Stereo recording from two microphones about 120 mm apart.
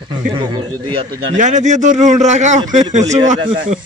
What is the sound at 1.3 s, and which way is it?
A man's voice, 90° right.